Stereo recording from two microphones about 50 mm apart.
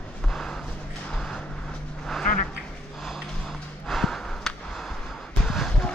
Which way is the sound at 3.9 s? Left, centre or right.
Centre.